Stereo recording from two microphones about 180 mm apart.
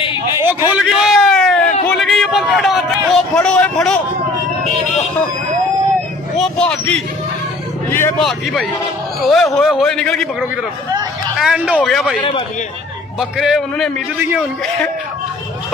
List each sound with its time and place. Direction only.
0.4 s a sound: 10° right (ahead or behind)
3.1 s speech: 5° left (ahead or behind)
6.4 s speech: 5° left (ahead or behind)
8.2 s a man's voice: centre (ahead or behind)
11.3 s a man's voice: 5° right (ahead or behind)
12.2 s a man's voice: 30° left (ahead or behind)
13.2 s a man's voice: centre (ahead or behind)